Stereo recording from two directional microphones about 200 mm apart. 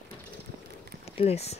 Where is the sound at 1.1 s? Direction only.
30° left (ahead or behind).